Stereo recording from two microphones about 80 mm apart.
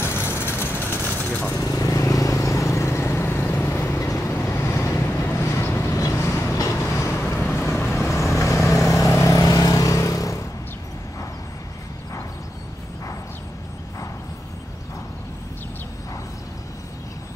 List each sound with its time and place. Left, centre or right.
0.0 s vehicle: left
1.6 s vehicle: left